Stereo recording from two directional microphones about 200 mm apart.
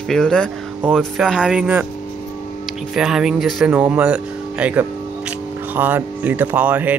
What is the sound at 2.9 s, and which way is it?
Speech, centre (ahead or behind).